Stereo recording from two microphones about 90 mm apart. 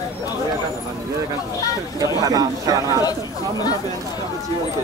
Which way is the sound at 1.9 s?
40° right (ahead or behind).